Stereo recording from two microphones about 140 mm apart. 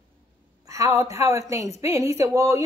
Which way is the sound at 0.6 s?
20° right (ahead or behind).